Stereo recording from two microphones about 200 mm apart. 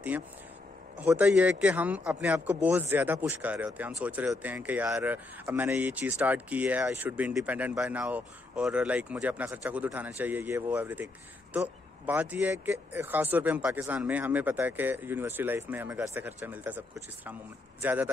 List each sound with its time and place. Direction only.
0.9 s speech: 5° right (ahead or behind)